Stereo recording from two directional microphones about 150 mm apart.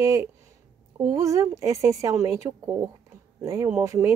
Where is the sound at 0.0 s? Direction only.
20° right (ahead or behind).